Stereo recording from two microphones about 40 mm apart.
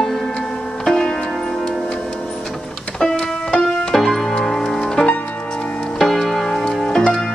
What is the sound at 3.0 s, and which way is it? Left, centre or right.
Music, centre.